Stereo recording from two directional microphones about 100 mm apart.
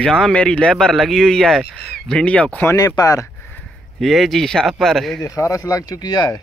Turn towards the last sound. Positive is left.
turn(degrees=45)  # may be behind; listen again after turning